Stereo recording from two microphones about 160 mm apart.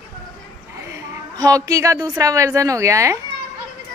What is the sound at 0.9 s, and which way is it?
A woman's voice, 20° right (ahead or behind).